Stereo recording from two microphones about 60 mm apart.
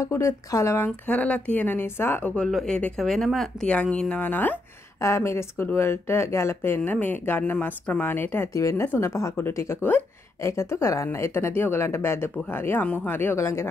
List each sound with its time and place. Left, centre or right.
0.0 s speech: left
0.7 s speech: left
3.0 s speech: centre
3.6 s speech: centre
4.2 s speech: left
5.0 s speech: left
8.5 s speech: left
9.0 s speech: left
13.4 s speech: left